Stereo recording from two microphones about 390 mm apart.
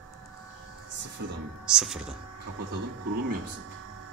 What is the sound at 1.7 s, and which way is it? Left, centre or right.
Speech, centre.